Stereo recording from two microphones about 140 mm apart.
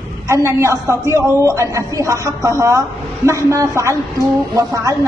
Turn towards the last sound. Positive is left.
turn(degrees=-25)  # may be behind; listen again after turning